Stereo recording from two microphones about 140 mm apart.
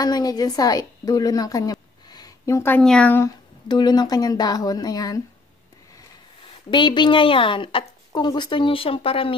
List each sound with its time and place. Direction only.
0.0 s a woman's voice: 30° left (ahead or behind)
2.8 s speech: 5° left (ahead or behind)
3.3 s speech: 30° left (ahead or behind)
6.7 s speech: 35° left (ahead or behind)